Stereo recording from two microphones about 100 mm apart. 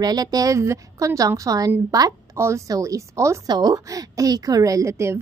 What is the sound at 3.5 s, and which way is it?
A woman's voice, 45° right (ahead or behind).